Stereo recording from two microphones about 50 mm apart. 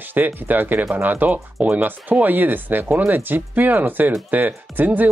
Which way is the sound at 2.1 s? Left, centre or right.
Right.